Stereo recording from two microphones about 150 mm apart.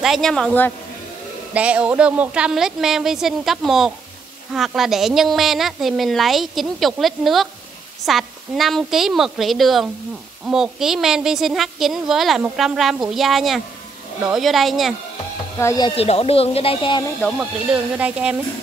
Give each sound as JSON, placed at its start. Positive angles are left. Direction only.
{"t": 0.0, "sound": "speech", "side_deg": 0}
{"t": 1.5, "sound": "speech", "side_deg": -10}
{"t": 15.6, "sound": "speech", "side_deg": 25}
{"t": 16.0, "sound": "speech", "side_deg": 40}
{"t": 17.4, "sound": "speech", "side_deg": -10}